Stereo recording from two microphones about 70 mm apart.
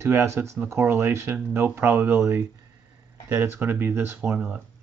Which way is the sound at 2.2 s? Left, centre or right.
Right.